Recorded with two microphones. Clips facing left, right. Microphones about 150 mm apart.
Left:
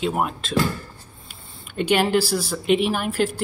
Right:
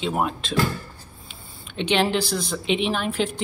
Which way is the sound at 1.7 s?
10° left (ahead or behind).